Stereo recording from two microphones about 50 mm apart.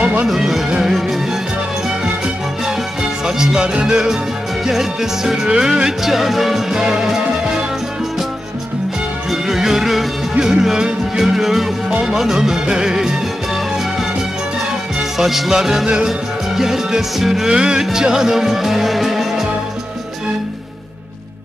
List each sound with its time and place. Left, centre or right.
0.0 s music: right
0.3 s music: centre
3.3 s music: centre
9.3 s music: centre
15.1 s music: centre